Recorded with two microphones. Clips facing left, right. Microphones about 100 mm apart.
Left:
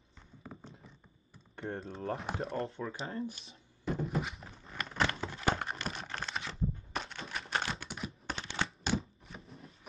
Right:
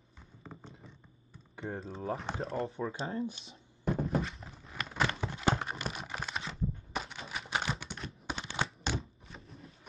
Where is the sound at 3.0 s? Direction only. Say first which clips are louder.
Right 3 dB; 25° right (ahead or behind).